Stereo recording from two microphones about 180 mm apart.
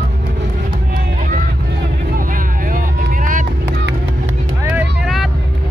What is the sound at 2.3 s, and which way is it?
Vehicle, 50° right (ahead or behind).